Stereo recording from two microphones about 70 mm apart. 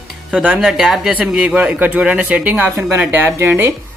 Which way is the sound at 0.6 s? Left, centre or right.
Centre.